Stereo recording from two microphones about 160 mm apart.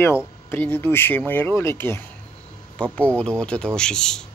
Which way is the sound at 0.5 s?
10° left (ahead or behind).